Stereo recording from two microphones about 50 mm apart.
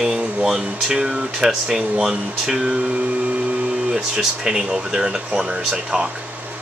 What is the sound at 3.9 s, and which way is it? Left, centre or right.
Speech, centre.